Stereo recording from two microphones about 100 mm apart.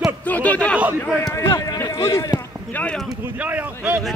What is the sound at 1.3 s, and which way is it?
Run, 30° left (ahead or behind).